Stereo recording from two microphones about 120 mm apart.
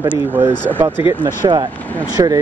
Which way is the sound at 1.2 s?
35° right (ahead or behind).